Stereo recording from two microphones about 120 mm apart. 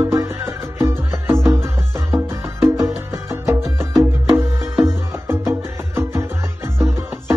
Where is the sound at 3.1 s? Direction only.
25° right (ahead or behind).